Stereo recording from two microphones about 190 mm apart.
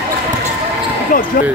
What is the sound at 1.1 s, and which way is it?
Basketball bounce, 45° left (ahead or behind).